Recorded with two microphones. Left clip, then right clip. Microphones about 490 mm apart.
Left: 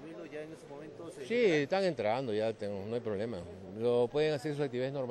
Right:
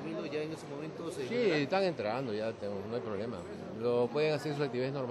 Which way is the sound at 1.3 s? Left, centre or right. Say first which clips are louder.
Left 2 dB; left.